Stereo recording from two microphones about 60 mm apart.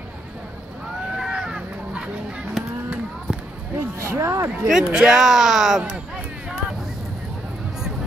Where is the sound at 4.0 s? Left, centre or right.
Right.